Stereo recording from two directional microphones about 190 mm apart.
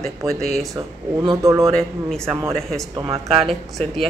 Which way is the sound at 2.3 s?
15° right (ahead or behind).